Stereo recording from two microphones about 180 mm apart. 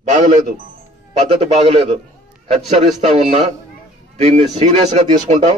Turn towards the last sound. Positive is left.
turn(degrees=-40)  # may be behind; listen again after turning